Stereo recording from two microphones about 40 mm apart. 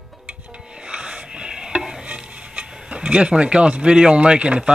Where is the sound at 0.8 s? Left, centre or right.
Right.